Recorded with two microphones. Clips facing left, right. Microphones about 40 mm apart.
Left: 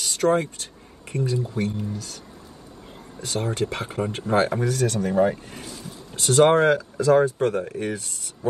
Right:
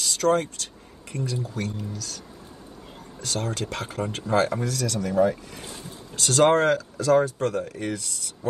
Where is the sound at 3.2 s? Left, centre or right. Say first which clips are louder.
Left 4 dB; left.